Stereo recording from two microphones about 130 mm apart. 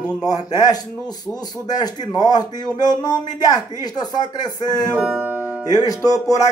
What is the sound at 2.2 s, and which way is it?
A man's voice, 30° left (ahead or behind).